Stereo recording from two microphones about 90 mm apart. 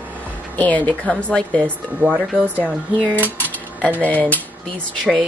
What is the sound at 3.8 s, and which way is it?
Speech, 15° left (ahead or behind).